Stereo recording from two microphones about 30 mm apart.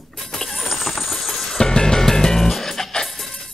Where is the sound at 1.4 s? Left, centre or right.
Centre.